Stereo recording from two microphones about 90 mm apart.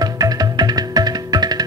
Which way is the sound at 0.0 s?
45° right (ahead or behind).